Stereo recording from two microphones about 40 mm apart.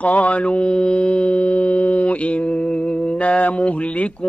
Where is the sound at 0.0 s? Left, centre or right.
Left.